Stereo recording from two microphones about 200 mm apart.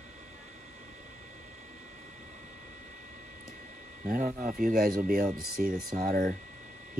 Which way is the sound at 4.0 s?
45° right (ahead or behind).